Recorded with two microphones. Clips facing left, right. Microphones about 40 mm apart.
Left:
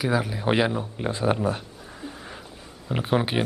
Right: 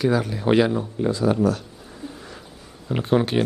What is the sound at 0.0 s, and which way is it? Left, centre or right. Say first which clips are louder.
Speech: right 3 dB; centre.